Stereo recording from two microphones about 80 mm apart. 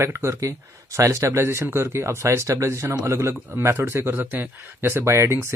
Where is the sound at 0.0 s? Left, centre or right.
Right.